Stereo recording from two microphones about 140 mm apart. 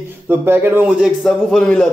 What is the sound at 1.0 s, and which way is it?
Speech, centre (ahead or behind).